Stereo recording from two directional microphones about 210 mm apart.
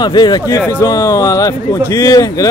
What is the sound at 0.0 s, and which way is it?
A man's voice, 20° left (ahead or behind).